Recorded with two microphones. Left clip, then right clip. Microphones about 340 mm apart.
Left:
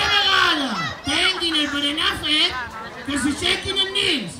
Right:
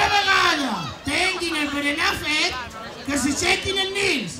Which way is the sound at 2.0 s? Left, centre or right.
Centre.